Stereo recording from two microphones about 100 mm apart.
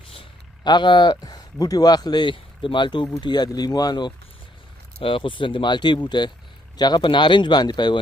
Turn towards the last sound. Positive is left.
turn(degrees=45)  # may be behind; listen again after turning